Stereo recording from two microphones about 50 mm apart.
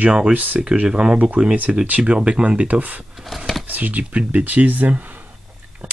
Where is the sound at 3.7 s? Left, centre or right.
Right.